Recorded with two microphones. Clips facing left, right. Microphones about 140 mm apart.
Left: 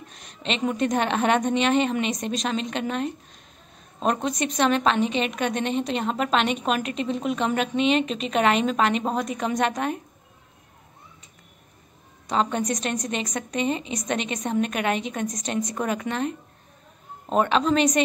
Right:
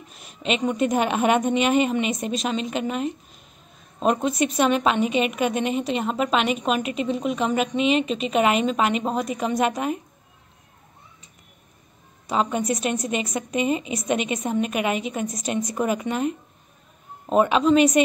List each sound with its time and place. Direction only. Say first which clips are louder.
0.1 s a woman's voice: right 4 dB; 5° right (ahead or behind)
12.3 s a woman's voice: right 1 dB; 5° right (ahead or behind)